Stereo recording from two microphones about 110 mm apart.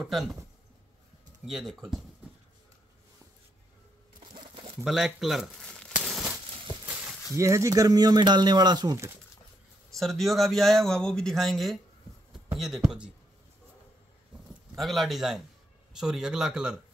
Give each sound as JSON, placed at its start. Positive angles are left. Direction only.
{"t": 0.0, "sound": "speech", "side_deg": 0}
{"t": 1.4, "sound": "speech", "side_deg": -5}
{"t": 4.3, "sound": "a sound", "side_deg": -45}
{"t": 4.8, "sound": "speech", "side_deg": -5}
{"t": 5.7, "sound": "crumpling", "side_deg": 10}
{"t": 6.9, "sound": "a sound", "side_deg": -15}
{"t": 7.3, "sound": "speech", "side_deg": -25}
{"t": 9.9, "sound": "speech", "side_deg": 0}
{"t": 14.8, "sound": "speech", "side_deg": 0}